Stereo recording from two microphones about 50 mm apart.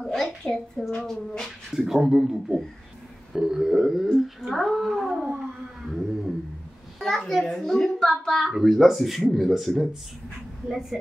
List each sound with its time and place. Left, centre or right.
0.0 s a woman's voice: centre
0.9 s a woman's voice: centre
1.7 s a woman's voice: centre
5.1 s a sound: centre
7.0 s a woman's voice: centre